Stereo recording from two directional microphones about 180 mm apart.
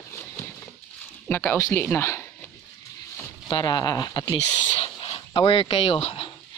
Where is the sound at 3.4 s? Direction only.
25° left (ahead or behind).